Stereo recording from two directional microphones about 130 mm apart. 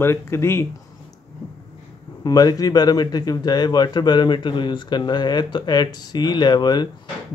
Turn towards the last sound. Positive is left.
turn(degrees=35)  # may be behind; listen again after turning